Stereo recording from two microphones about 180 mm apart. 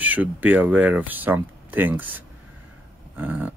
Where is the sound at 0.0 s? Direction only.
10° right (ahead or behind).